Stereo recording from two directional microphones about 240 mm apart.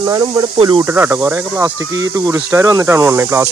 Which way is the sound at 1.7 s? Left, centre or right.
Right.